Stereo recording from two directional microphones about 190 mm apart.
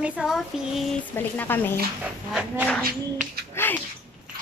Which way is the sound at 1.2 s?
10° left (ahead or behind).